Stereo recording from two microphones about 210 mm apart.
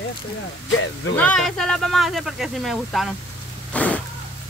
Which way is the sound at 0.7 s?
65° left (ahead or behind).